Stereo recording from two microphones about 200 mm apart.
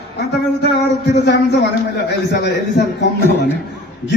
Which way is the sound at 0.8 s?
60° left (ahead or behind).